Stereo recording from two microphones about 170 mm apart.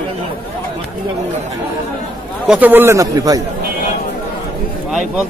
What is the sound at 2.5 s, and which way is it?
Moo, 10° right (ahead or behind).